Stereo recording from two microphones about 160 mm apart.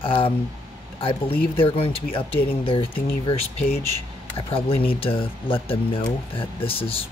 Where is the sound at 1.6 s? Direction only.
35° left (ahead or behind).